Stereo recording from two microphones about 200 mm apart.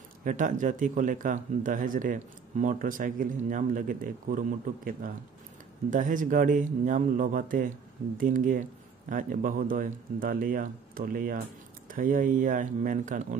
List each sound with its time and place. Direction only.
0.2 s speech: 40° right (ahead or behind)